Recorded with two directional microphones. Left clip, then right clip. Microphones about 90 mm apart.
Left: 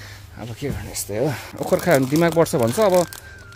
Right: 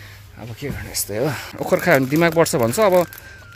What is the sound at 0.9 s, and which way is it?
Speech, 5° left (ahead or behind).